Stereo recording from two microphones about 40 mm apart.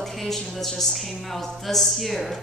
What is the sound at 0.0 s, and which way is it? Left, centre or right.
A woman's voice, centre.